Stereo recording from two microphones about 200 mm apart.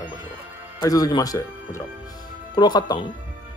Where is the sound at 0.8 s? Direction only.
20° left (ahead or behind).